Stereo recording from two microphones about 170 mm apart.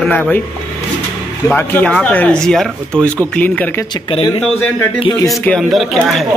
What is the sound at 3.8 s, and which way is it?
Speech, 30° left (ahead or behind).